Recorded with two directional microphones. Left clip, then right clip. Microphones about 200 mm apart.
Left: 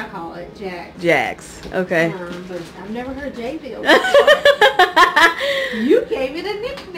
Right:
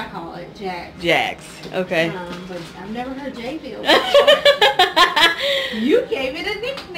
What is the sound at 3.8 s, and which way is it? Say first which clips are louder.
Speech: left 1 dB; 30° left (ahead or behind).